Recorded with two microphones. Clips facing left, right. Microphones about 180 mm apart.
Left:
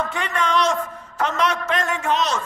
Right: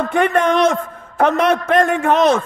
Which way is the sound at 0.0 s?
55° right (ahead or behind).